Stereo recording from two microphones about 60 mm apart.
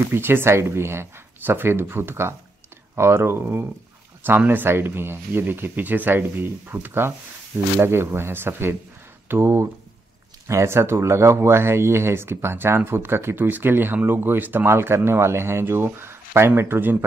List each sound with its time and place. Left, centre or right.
0.1 s speech: right
10.5 s speech: right